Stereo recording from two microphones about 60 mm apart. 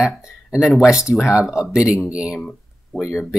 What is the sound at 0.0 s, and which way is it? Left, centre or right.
Speech, centre.